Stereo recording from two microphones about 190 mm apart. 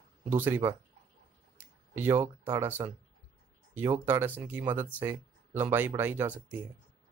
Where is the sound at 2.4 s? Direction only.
15° right (ahead or behind).